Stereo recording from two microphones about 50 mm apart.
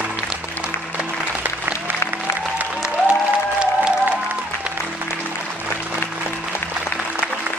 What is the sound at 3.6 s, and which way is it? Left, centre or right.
Music, right.